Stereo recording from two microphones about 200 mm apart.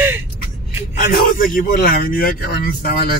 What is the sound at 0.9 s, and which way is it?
Speech, 45° left (ahead or behind).